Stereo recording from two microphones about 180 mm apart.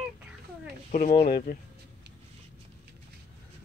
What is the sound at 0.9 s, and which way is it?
Speech, 45° left (ahead or behind).